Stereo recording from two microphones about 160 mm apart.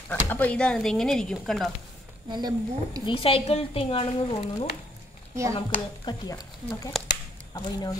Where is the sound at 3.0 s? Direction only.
35° left (ahead or behind).